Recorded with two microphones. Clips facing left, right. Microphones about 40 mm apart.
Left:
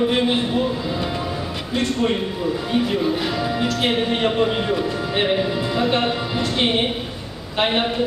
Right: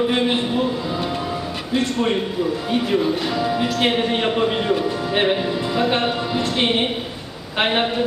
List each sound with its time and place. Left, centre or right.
3.3 s a man's voice: centre